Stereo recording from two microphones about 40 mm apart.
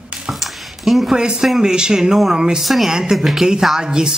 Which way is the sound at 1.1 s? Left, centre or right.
Centre.